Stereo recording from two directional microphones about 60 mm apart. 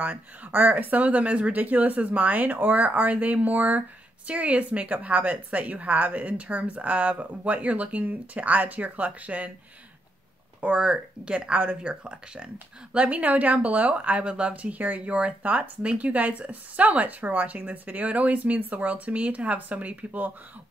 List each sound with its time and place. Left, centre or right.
0.0 s speech: right
10.6 s speech: centre